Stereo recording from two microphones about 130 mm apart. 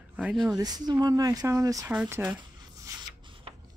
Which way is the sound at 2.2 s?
30° right (ahead or behind).